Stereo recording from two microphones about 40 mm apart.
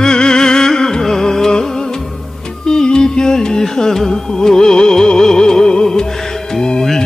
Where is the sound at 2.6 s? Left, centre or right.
Centre.